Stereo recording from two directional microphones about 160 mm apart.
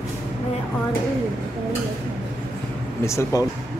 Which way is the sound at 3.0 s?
20° left (ahead or behind).